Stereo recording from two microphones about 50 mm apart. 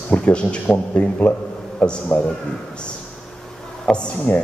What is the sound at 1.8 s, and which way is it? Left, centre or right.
Speech, left.